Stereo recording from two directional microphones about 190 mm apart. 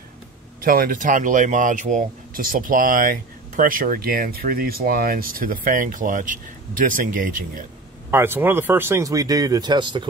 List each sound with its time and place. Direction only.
0.6 s speech: 50° right (ahead or behind)
8.1 s speech: 10° right (ahead or behind)